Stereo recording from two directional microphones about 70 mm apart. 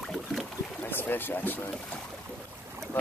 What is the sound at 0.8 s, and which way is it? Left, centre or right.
Speech, left.